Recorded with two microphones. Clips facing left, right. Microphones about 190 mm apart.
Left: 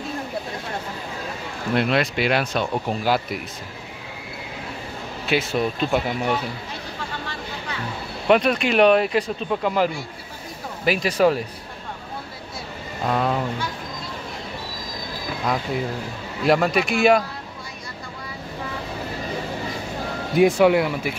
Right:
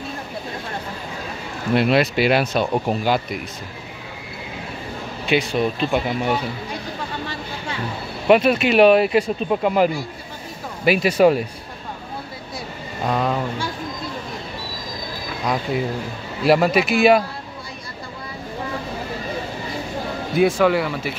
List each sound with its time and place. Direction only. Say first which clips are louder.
1.7 s speech: right 4 dB; 5° right (ahead or behind)
5.2 s speech: right 2 dB; centre (ahead or behind)
8.3 s speech: right 3 dB; 5° right (ahead or behind)
10.9 s speech: right 4 dB; 10° right (ahead or behind)
13.0 s speech: right 1 dB; centre (ahead or behind)
16.4 s speech: right 3 dB; 5° right (ahead or behind)
20.3 s speech: left 1 dB; 15° left (ahead or behind)